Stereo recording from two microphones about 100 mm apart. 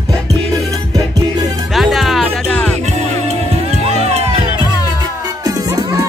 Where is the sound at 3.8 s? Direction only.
90° right.